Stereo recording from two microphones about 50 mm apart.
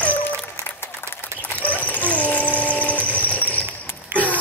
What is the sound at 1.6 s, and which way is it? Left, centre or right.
Sewing machine, left.